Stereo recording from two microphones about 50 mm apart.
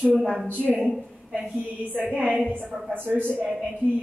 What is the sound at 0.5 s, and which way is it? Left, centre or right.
A woman's voice, right.